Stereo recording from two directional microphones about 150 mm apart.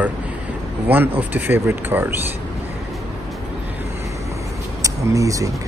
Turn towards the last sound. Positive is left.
turn(degrees=-20)  # may be behind; listen again after turning